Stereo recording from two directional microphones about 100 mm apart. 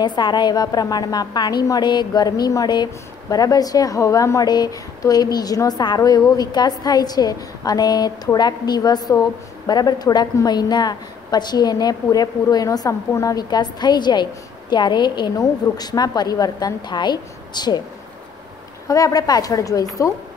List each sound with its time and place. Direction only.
0.0 s a woman's voice: 45° left (ahead or behind)
15.3 s a woman's voice: 40° left (ahead or behind)
18.9 s a woman's voice: 35° left (ahead or behind)